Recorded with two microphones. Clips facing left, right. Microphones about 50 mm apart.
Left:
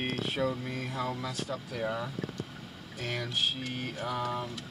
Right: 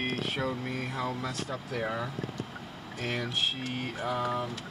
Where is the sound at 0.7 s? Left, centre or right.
Right.